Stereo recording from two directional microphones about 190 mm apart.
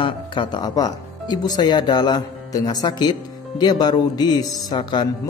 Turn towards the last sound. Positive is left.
turn(degrees=25)  # may be behind; listen again after turning